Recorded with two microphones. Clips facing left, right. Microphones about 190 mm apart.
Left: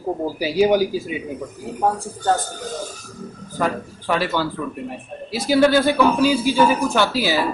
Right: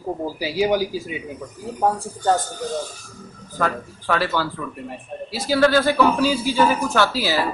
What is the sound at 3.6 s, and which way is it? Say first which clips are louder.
Speech: left 1 dB; 15° left (ahead or behind).